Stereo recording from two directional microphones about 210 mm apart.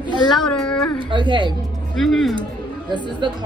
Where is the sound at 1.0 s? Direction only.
25° right (ahead or behind).